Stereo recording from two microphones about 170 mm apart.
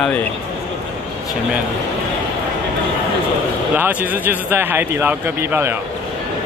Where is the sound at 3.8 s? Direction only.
10° right (ahead or behind).